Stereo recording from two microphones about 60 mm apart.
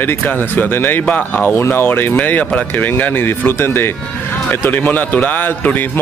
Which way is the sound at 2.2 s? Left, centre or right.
Left.